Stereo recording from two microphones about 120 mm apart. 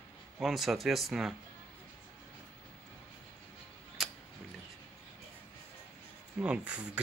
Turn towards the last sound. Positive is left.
turn(degrees=-10)  # may be behind; listen again after turning